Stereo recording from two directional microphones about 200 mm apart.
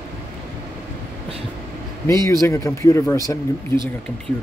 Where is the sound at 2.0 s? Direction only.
15° left (ahead or behind).